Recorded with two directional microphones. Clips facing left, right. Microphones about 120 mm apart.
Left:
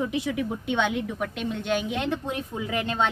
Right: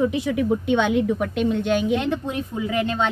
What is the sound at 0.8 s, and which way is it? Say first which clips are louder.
A woman's voice: right 6 dB; centre (ahead or behind).